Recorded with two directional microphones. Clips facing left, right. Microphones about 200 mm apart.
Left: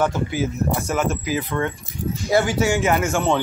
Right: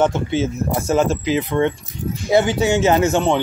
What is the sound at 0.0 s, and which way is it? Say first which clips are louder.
Speech: right 4 dB; 25° right (ahead or behind).